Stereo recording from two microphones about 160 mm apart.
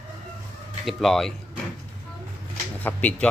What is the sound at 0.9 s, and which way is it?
Speech, centre (ahead or behind).